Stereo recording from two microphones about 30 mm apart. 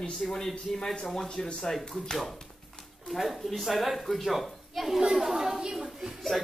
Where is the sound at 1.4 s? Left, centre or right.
Centre.